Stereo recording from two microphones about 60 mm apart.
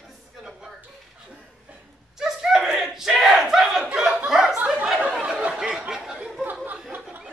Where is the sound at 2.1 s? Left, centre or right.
Centre.